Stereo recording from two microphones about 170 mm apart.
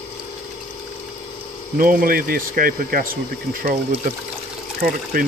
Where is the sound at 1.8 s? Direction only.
55° right (ahead or behind).